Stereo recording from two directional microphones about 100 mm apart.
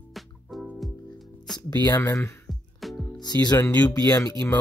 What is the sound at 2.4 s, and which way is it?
Music, centre (ahead or behind).